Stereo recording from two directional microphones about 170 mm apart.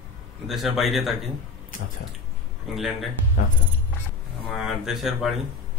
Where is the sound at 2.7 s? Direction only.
Centre (ahead or behind).